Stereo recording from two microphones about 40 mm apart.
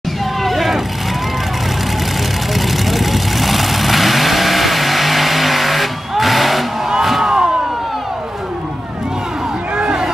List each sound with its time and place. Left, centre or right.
0.4 s vehicle: centre
2.5 s vehicle: centre
6.9 s music: centre
9.8 s a sound: right